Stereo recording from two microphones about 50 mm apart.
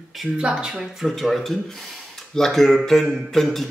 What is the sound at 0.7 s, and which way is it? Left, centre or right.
A man's voice, centre.